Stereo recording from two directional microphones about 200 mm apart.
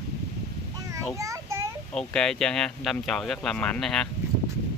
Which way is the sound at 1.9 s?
5° left (ahead or behind).